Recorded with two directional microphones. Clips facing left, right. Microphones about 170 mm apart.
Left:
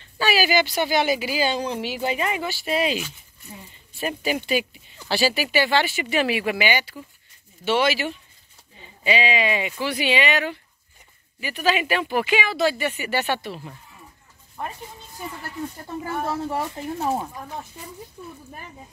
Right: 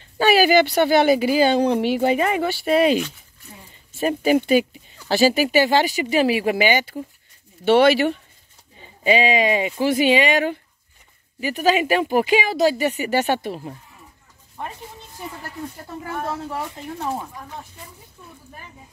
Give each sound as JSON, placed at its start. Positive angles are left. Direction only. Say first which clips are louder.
{"t": 0.2, "sound": "speech", "louder": "right 6 dB", "side_deg": -55}
{"t": 4.0, "sound": "speech", "louder": "right 8 dB", "side_deg": -45}
{"t": 7.6, "sound": "speech", "louder": "right 7 dB", "side_deg": -60}
{"t": 9.0, "sound": "speech", "louder": "right 5 dB", "side_deg": -45}
{"t": 16.5, "sound": "speech", "louder": "left 2 dB", "side_deg": 10}